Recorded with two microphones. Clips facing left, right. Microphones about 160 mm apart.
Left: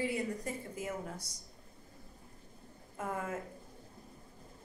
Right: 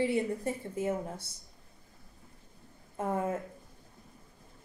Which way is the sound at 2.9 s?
30° right (ahead or behind).